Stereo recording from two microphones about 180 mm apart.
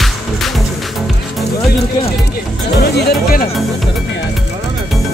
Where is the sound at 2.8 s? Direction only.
65° left (ahead or behind).